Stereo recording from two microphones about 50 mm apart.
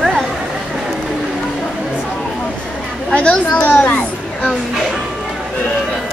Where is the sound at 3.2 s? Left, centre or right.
Left.